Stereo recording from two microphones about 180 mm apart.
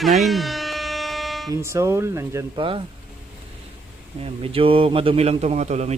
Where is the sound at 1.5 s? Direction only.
15° right (ahead or behind).